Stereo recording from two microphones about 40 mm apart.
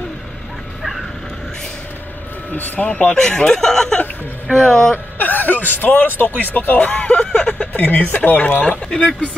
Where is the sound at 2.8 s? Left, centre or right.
Left.